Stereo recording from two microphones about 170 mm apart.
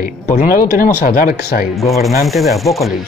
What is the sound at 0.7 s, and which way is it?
Speech, 55° left (ahead or behind).